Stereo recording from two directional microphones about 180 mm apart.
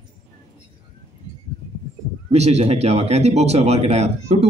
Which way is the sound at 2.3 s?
35° right (ahead or behind).